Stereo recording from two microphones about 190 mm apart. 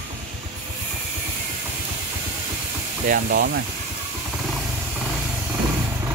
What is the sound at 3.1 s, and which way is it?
Speech, 50° right (ahead or behind).